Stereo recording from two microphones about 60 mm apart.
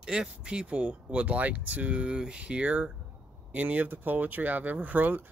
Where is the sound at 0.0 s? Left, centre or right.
Centre.